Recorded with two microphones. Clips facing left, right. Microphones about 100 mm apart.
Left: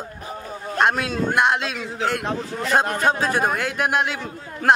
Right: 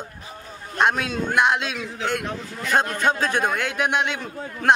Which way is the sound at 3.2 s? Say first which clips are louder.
Left 1 dB; 5° left (ahead or behind).